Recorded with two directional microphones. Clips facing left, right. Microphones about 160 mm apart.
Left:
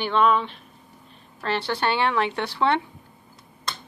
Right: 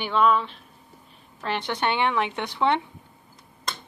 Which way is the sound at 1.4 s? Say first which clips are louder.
Left 2 dB; 15° right (ahead or behind).